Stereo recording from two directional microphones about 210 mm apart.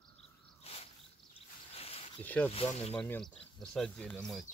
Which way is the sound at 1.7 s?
30° left (ahead or behind).